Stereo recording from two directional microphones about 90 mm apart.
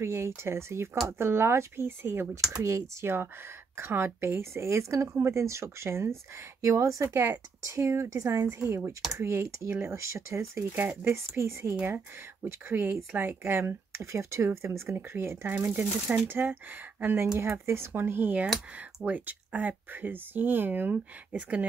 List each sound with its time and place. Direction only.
0.0 s speech: 30° right (ahead or behind)